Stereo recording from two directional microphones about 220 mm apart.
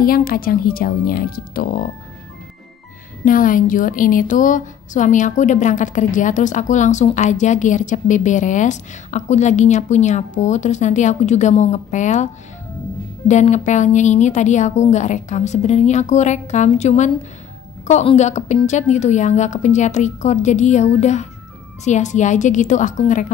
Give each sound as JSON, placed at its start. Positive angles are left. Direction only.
{"t": 0.0, "sound": "speech", "side_deg": 40}
{"t": 3.3, "sound": "speech", "side_deg": 40}
{"t": 13.3, "sound": "speech", "side_deg": 30}